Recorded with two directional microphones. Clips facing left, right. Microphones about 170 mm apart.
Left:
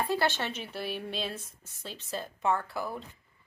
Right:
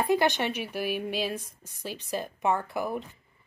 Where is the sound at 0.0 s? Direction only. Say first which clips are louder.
Right 5 dB; 15° right (ahead or behind).